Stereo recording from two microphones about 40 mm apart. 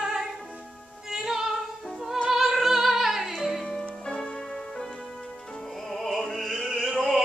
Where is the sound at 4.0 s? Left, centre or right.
Left.